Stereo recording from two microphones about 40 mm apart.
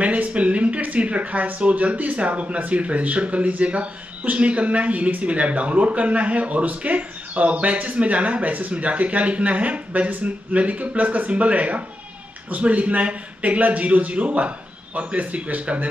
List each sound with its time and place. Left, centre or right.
0.0 s speech: right